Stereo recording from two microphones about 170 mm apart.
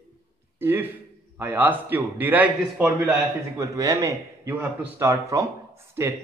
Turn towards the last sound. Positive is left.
turn(degrees=-15)  # may be behind; listen again after turning